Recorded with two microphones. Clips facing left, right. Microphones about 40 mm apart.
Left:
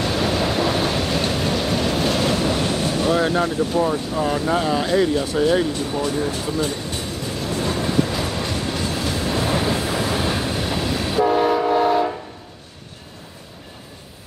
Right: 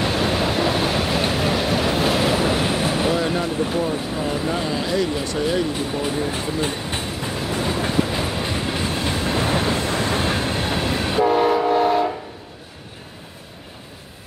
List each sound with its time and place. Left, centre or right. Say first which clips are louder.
0.0 s vehicle: even; centre
3.5 s speech: left 2 dB; centre
4.5 s speech: left 3 dB; centre
5.7 s speech: left 1 dB; centre
7.1 s train: right 1 dB; centre